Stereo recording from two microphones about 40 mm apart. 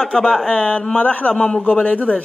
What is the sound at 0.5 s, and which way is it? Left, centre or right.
A man's voice, left.